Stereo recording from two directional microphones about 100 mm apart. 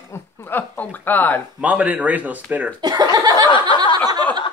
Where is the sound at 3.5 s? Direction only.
55° left (ahead or behind).